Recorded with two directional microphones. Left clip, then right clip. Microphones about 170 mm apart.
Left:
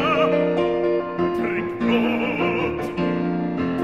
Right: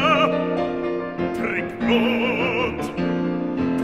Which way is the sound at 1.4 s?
5° right (ahead or behind).